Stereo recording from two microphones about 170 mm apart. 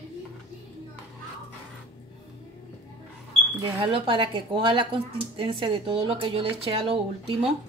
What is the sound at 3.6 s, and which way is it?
Speech, 30° right (ahead or behind).